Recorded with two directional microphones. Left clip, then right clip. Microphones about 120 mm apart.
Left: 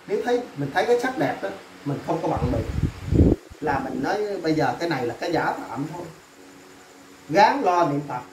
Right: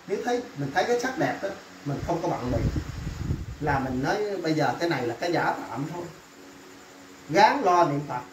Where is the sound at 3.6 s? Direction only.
20° left (ahead or behind).